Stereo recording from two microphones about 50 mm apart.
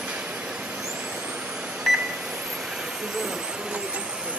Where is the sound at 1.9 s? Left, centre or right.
Centre.